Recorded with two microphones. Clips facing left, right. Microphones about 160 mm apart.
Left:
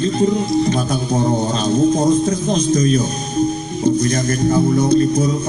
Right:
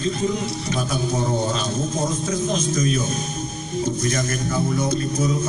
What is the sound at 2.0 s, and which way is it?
Speech, 35° left (ahead or behind).